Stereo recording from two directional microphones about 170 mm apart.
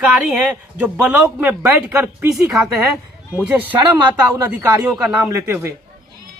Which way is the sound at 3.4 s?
10° right (ahead or behind).